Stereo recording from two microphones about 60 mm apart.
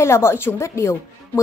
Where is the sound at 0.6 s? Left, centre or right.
Left.